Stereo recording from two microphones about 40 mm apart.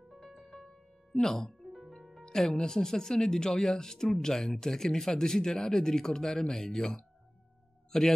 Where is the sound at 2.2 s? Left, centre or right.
Centre.